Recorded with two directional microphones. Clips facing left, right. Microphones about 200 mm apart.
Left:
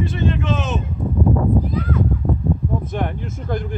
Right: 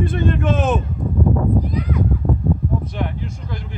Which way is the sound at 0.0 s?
50° right (ahead or behind).